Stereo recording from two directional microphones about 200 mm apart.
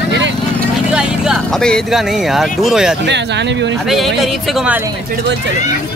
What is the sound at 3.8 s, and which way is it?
Speech, centre (ahead or behind).